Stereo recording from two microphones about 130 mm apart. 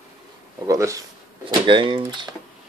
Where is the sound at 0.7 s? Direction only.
25° right (ahead or behind).